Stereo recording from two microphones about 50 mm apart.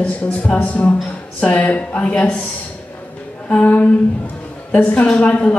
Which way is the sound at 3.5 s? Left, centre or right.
Left.